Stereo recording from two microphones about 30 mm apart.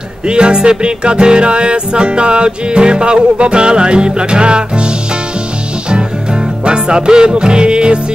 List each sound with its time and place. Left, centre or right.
0.3 s music: right
6.6 s music: right